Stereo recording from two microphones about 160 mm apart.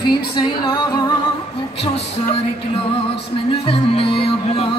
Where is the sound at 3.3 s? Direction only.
35° left (ahead or behind).